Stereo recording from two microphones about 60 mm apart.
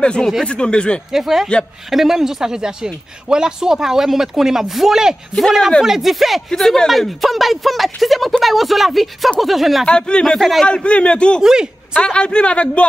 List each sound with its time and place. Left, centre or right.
0.0 s a man's voice: centre
1.1 s speech: centre
9.8 s a man's voice: centre
11.4 s speech: centre
11.9 s a man's voice: centre